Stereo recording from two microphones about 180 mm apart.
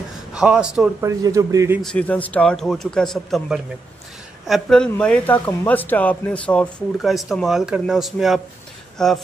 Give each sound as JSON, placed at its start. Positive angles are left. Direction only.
{"t": 0.3, "sound": "a man's voice", "side_deg": -5}
{"t": 1.0, "sound": "speech", "side_deg": -20}
{"t": 1.8, "sound": "speech", "side_deg": 5}